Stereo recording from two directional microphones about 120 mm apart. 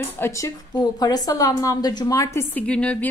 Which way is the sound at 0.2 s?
25° left (ahead or behind).